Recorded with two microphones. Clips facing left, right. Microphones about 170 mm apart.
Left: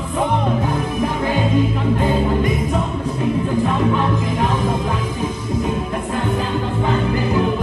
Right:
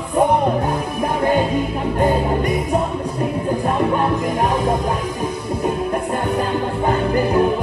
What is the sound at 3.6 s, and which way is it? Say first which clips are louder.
Music: even; 50° right (ahead or behind).